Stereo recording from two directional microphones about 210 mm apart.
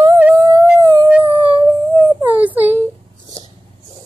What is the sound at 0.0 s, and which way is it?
Music, 15° right (ahead or behind).